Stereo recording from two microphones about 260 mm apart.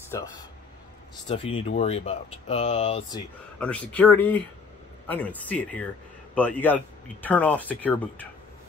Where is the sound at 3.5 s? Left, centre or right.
Centre.